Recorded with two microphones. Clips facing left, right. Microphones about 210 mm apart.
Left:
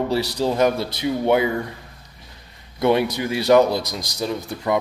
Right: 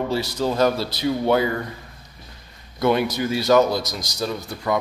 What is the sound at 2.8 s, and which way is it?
Speech, 25° left (ahead or behind).